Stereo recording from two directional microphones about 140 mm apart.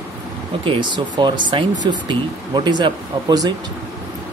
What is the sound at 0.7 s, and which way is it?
Speech, 35° right (ahead or behind).